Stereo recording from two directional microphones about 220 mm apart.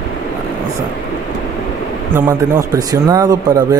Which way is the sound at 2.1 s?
10° right (ahead or behind).